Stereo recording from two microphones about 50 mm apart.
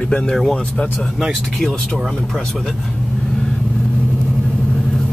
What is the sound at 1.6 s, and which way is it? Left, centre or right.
Speech, centre.